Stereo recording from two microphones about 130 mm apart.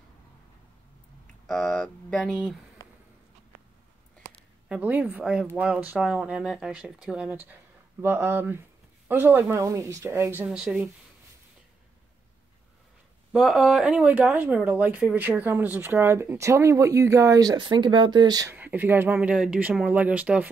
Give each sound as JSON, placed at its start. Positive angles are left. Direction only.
{"t": 1.5, "sound": "speech", "side_deg": 5}
{"t": 4.6, "sound": "speech", "side_deg": -10}
{"t": 13.3, "sound": "speech", "side_deg": -5}
{"t": 18.5, "sound": "speech", "side_deg": -15}